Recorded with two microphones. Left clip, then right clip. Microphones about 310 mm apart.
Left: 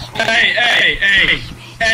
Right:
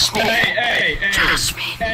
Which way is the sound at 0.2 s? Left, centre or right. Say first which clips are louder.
Left 9 dB; left.